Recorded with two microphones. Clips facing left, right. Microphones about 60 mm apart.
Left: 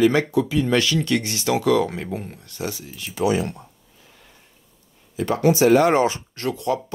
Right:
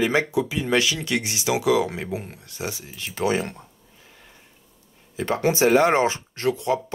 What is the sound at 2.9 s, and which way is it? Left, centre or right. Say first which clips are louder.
Speech: left 2 dB; right.